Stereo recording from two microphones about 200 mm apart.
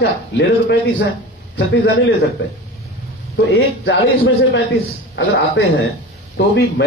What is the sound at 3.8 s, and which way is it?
Speech, 60° left (ahead or behind).